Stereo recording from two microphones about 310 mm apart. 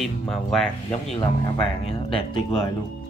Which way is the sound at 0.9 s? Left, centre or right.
Centre.